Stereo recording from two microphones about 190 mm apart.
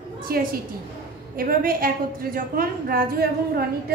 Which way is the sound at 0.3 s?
50° right (ahead or behind).